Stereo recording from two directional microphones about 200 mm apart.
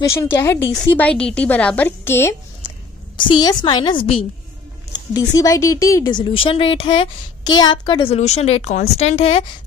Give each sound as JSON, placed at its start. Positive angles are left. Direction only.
{"t": 0.0, "sound": "a woman's voice", "side_deg": 15}
{"t": 3.2, "sound": "a woman's voice", "side_deg": 20}